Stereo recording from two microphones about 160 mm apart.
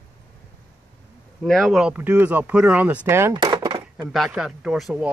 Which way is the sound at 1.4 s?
Centre (ahead or behind).